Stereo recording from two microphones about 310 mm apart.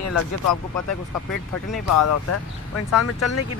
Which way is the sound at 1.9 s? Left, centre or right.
Left.